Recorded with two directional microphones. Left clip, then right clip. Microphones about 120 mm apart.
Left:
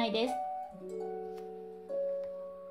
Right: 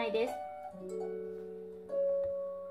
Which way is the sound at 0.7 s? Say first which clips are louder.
Even; centre (ahead or behind).